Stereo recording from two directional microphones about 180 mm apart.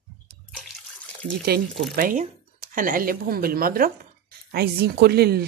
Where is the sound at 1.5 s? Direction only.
60° right (ahead or behind).